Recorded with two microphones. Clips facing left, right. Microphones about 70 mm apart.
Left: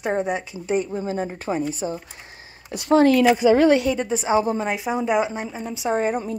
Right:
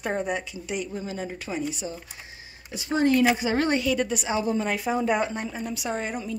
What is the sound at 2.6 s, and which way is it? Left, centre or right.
Speech, left.